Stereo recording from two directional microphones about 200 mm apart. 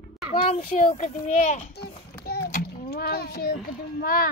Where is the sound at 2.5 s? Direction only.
45° left (ahead or behind).